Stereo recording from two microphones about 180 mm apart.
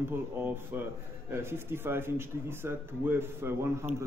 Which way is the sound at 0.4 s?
10° right (ahead or behind).